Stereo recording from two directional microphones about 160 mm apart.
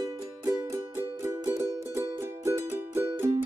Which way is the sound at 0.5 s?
15° right (ahead or behind).